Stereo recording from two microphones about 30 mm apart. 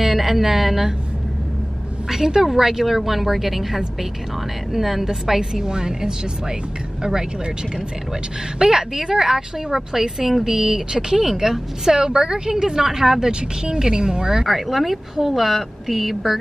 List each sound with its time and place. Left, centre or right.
0.0 s speech: centre
2.0 s a woman's voice: centre
5.5 s a woman's voice: right
8.5 s a woman's voice: centre
10.9 s a woman's voice: right
11.1 s a woman's voice: centre
14.4 s speech: centre